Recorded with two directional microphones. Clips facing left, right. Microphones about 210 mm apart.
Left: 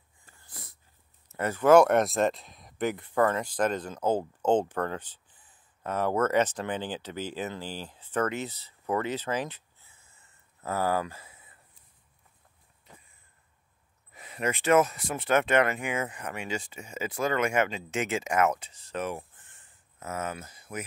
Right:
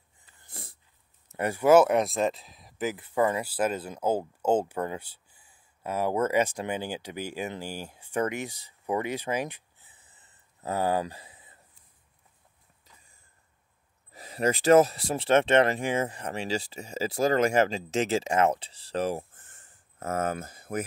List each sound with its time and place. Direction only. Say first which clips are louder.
0.4 s dog: right 3 dB; 25° right (ahead or behind)
1.3 s speech: even; 15° right (ahead or behind)
14.1 s speech: right 4 dB; 35° right (ahead or behind); by 20.8 s 50° right (ahead or behind)